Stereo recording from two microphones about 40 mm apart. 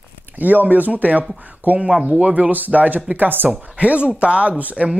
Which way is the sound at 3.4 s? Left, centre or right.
Right.